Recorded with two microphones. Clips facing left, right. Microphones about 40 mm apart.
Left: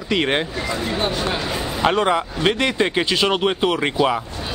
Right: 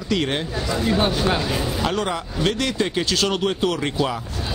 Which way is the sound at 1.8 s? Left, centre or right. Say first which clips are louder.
Left 6 dB; left.